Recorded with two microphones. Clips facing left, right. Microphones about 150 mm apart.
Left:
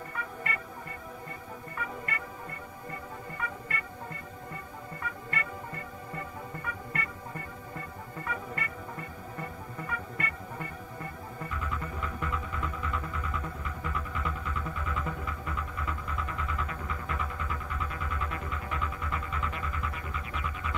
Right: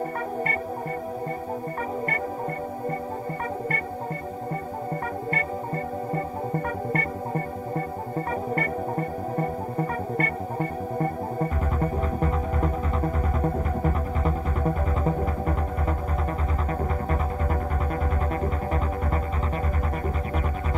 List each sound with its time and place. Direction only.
6.1 s music: 45° right (ahead or behind)
18.3 s music: 40° right (ahead or behind)